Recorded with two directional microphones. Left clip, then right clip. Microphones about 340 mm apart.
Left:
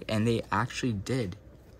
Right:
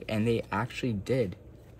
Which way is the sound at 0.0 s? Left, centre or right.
Centre.